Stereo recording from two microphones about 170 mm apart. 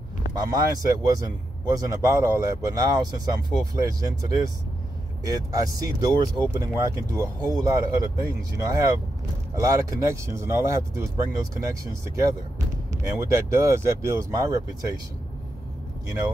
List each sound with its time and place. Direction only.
0.3 s speech: 20° right (ahead or behind)